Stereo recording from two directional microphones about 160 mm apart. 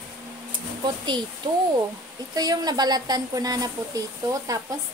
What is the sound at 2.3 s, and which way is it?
Speech, 25° right (ahead or behind).